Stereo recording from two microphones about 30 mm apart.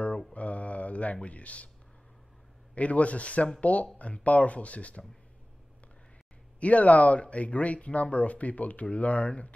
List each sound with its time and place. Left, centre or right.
0.3 s a sound: left
1.1 s speech: left
2.7 s speech: left
6.6 s speech: left